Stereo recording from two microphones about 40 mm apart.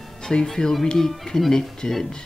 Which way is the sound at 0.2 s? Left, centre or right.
Centre.